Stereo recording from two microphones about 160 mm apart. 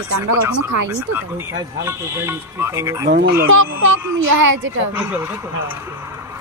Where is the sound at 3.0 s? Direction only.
90° right.